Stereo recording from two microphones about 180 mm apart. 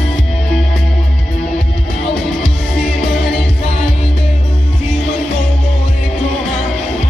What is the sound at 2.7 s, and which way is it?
Music, 5° left (ahead or behind).